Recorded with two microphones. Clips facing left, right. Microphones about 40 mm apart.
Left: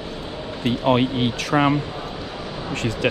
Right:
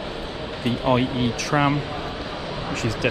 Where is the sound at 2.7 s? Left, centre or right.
Left.